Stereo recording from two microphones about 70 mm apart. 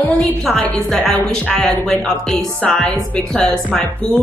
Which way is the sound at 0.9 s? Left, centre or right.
Centre.